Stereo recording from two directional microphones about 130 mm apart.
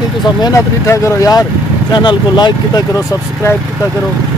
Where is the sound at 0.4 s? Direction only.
25° left (ahead or behind).